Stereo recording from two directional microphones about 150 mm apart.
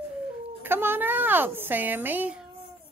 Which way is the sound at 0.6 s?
15° right (ahead or behind).